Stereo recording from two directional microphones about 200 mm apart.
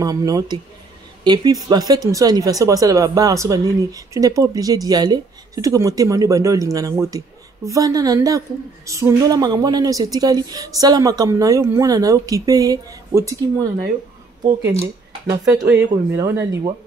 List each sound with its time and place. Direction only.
0.0 s a woman's voice: 15° right (ahead or behind)